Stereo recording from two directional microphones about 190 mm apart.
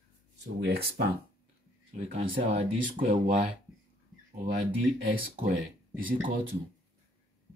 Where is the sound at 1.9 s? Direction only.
35° right (ahead or behind).